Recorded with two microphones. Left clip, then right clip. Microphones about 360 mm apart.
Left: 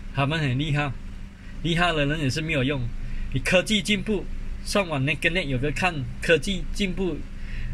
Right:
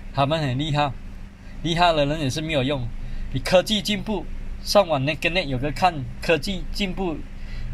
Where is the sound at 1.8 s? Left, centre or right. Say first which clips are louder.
Right 5 dB; centre.